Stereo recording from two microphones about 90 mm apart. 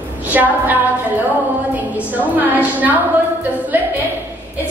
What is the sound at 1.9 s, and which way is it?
A woman's voice, 20° right (ahead or behind).